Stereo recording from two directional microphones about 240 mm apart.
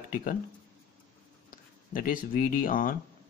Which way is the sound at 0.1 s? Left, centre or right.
Left.